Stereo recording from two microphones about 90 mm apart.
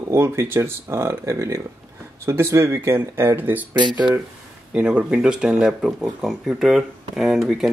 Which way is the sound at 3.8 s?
60° right (ahead or behind).